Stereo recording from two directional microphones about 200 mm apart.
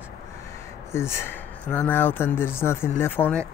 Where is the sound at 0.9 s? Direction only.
15° left (ahead or behind).